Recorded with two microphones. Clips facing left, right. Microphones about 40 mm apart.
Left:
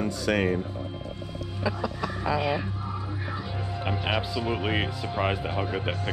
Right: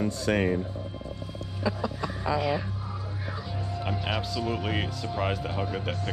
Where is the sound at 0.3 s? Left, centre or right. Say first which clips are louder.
Left 1 dB; left.